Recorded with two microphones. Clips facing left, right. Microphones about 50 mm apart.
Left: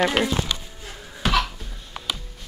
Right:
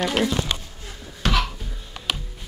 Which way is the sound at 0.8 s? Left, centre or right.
Centre.